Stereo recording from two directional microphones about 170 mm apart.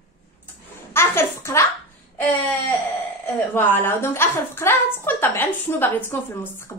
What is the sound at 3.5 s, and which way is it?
A woman's voice, 10° left (ahead or behind).